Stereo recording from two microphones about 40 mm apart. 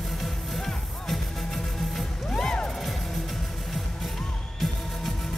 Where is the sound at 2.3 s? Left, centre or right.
Centre.